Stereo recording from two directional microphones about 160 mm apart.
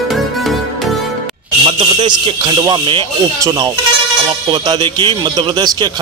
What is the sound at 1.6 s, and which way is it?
A man's voice, 30° right (ahead or behind).